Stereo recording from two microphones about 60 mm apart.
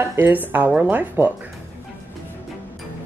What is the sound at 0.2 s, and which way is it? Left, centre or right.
Speech, right.